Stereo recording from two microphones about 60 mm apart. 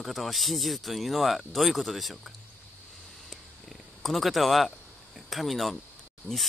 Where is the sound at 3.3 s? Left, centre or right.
Centre.